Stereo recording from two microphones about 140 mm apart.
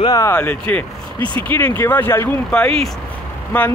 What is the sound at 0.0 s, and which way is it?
Speech, 25° left (ahead or behind).